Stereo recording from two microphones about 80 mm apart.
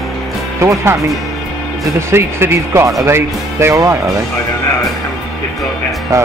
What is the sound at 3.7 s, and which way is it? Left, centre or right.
Speech, right.